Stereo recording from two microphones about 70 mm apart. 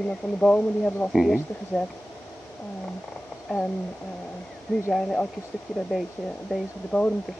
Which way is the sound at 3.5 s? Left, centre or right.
Centre.